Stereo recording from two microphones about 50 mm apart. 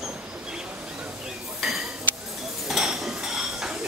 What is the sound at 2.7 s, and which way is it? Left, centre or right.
Cutlery, centre.